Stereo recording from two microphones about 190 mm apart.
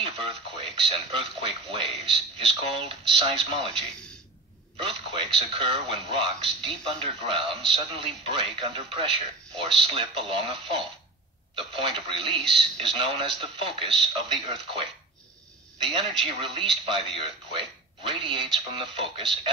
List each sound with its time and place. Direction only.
0.0 s speech: 30° right (ahead or behind)